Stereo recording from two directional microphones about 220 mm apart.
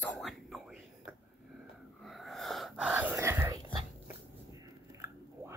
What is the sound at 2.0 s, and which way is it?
Sneeze, centre (ahead or behind).